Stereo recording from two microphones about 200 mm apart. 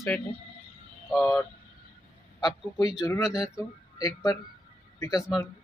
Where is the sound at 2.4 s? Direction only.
20° left (ahead or behind).